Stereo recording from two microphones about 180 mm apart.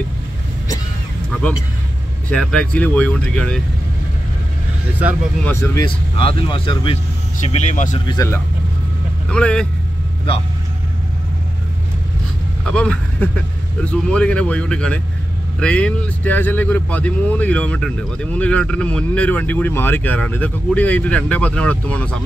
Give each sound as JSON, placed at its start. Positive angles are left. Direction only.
{"t": 2.2, "sound": "speech", "side_deg": 5}
{"t": 5.4, "sound": "speech", "side_deg": 15}
{"t": 5.9, "sound": "speech", "side_deg": 30}
{"t": 7.4, "sound": "speech", "side_deg": 40}
{"t": 8.1, "sound": "speech", "side_deg": 20}
{"t": 9.3, "sound": "speech", "side_deg": 5}
{"t": 12.6, "sound": "speech", "side_deg": 5}